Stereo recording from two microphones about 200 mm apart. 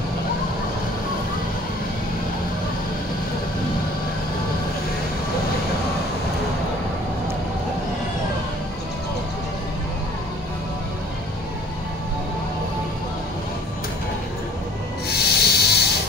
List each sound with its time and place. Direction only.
15.0 s sanding: 50° left (ahead or behind)